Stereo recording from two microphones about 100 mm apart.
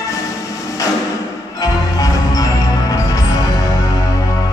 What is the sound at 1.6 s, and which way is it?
Music, 35° left (ahead or behind).